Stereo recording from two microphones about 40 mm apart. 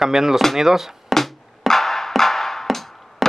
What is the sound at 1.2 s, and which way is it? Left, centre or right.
Music, centre.